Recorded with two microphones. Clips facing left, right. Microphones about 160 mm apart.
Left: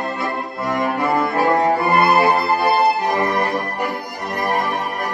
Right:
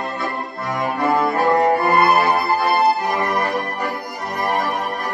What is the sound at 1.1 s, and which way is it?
Cello, centre (ahead or behind).